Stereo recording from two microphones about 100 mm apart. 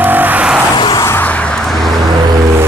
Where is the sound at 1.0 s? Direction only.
20° left (ahead or behind); by 1.9 s 5° left (ahead or behind).